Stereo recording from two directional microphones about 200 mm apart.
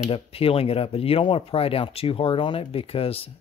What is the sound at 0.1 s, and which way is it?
Speech, 30° left (ahead or behind).